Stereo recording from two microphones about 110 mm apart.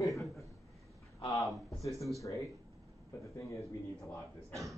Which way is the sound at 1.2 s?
30° left (ahead or behind).